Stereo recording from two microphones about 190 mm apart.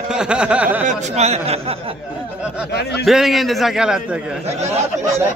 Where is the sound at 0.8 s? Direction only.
40° right (ahead or behind).